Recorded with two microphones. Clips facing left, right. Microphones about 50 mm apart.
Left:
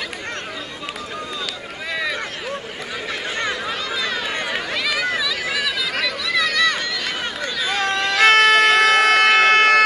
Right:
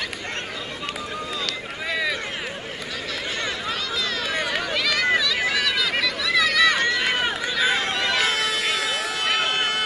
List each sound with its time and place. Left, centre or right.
1.9 s run: centre
3.6 s a sound: centre
7.2 s run: centre
8.2 s bagpipes: left